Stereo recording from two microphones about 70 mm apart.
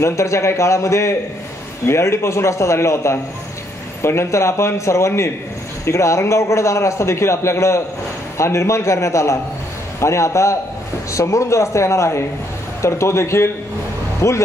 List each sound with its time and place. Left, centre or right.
0.0 s a man's voice: left